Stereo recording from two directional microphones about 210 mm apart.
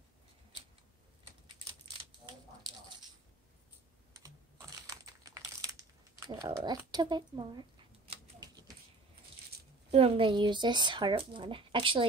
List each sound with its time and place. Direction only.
4.1 s computer keyboard: 15° right (ahead or behind)
6.9 s speech: 20° right (ahead or behind)
8.1 s typewriter: 20° right (ahead or behind)
9.8 s speech: 30° right (ahead or behind)